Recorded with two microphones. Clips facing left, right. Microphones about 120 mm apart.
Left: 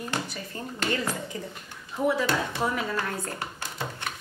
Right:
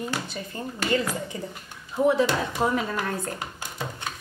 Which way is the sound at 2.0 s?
20° right (ahead or behind).